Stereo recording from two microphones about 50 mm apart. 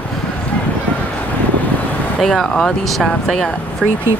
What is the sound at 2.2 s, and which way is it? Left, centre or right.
Speech, centre.